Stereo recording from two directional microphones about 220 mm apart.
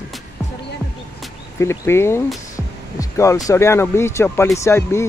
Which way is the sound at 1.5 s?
10° left (ahead or behind).